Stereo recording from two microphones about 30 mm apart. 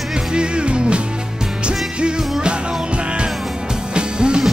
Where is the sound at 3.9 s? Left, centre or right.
Right.